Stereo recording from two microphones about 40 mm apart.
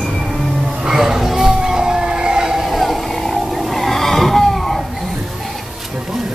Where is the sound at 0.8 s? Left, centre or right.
Centre.